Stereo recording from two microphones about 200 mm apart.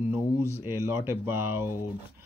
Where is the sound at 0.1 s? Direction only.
10° right (ahead or behind).